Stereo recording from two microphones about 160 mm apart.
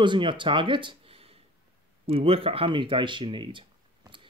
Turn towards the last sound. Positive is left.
turn(degrees=-30)  # may be behind; listen again after turning